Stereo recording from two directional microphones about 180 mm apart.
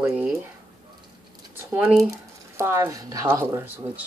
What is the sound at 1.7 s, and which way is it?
Speech, 15° right (ahead or behind).